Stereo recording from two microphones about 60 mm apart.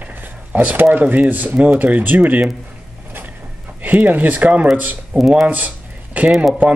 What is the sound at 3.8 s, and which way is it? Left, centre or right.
Speech, right.